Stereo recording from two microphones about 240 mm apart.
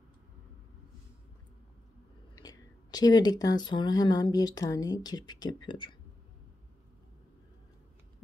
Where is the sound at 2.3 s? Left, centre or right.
Centre.